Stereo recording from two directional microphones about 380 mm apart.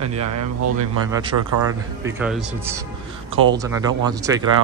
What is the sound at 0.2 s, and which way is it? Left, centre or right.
Speech, right.